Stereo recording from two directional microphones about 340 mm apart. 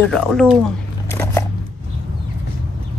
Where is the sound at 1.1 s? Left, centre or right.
Centre.